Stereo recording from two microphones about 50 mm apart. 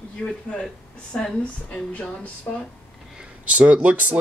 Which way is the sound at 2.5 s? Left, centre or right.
Left.